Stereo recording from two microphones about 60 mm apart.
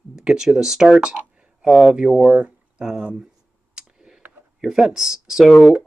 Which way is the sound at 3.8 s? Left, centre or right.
Centre.